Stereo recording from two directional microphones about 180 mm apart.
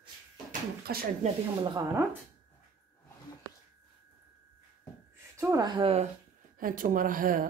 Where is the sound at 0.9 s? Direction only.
60° right (ahead or behind).